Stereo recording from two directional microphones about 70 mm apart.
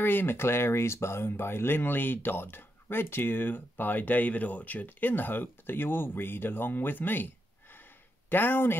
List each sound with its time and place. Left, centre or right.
0.0 s speech: left
8.3 s speech: left